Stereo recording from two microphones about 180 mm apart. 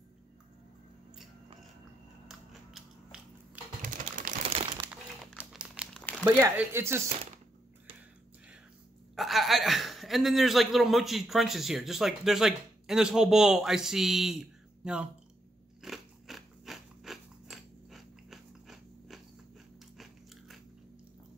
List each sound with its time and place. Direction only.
2.2 s a sound: 5° right (ahead or behind)
3.8 s a sound: 45° right (ahead or behind)
5.4 s crumpling: 5° right (ahead or behind)
5.9 s crumpling: 10° left (ahead or behind)
6.2 s speech: 15° right (ahead or behind)
9.1 s speech: centre (ahead or behind)
15.8 s biting: centre (ahead or behind)